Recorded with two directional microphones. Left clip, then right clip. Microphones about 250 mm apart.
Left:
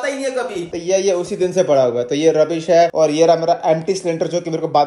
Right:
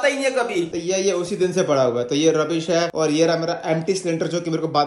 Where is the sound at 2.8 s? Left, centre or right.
Centre.